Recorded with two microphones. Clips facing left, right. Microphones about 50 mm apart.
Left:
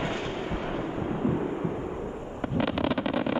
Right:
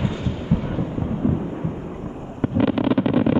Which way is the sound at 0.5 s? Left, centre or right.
Left.